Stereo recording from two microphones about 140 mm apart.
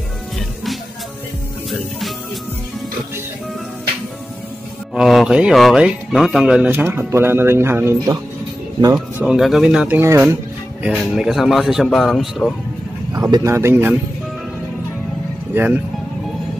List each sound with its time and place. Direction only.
1.7 s music: centre (ahead or behind)
4.9 s speech: centre (ahead or behind); by 8.2 s 20° right (ahead or behind)
8.9 s a man's voice: 5° right (ahead or behind)
9.9 s speech: 15° right (ahead or behind)
10.8 s a man's voice: 5° right (ahead or behind)
13.1 s speech: 25° right (ahead or behind)
15.5 s speech: 15° right (ahead or behind)